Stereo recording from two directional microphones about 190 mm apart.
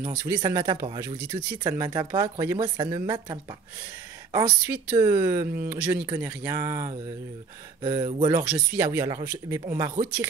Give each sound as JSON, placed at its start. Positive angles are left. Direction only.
{"t": 0.0, "sound": "speech", "side_deg": -15}